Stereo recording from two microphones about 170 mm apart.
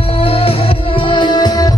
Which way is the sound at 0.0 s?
35° left (ahead or behind).